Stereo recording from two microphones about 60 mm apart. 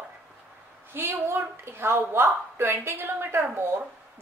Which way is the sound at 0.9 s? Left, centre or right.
Right.